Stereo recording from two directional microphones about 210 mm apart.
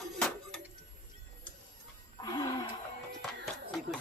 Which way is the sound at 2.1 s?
20° left (ahead or behind).